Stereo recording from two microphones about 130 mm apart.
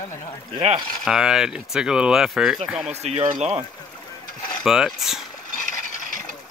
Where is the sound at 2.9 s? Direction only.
55° right (ahead or behind).